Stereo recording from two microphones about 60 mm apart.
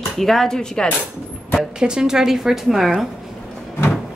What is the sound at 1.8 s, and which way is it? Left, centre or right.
Speech, centre.